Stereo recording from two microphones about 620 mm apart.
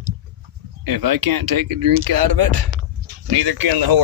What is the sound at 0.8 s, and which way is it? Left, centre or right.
Speech, right.